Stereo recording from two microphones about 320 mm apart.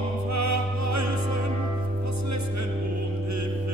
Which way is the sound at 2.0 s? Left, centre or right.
Right.